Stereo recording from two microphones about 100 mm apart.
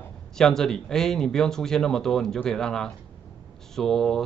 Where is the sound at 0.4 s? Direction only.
5° left (ahead or behind).